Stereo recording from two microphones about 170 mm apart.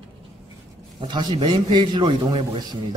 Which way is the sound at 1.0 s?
25° right (ahead or behind).